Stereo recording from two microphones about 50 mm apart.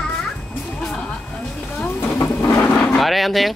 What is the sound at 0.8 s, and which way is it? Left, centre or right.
Vehicle, centre.